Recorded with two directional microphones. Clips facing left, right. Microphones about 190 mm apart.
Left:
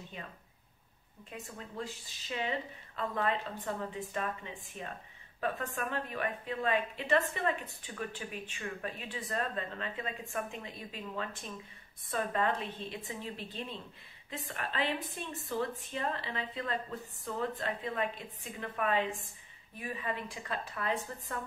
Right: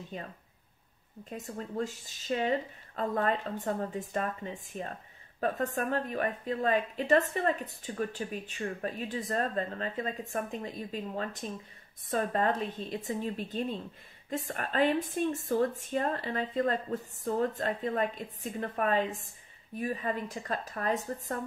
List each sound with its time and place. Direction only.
0.1 s a woman's voice: 40° right (ahead or behind)
1.3 s a woman's voice: 40° right (ahead or behind)